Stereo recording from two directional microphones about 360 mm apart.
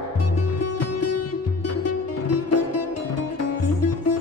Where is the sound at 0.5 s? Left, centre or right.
Left.